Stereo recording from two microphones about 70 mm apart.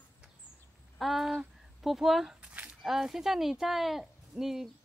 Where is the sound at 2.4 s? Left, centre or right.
Centre.